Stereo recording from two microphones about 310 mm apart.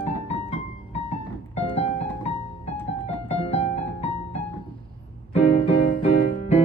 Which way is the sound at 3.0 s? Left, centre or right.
Centre.